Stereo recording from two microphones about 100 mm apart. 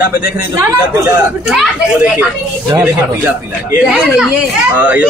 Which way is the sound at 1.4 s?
5° right (ahead or behind).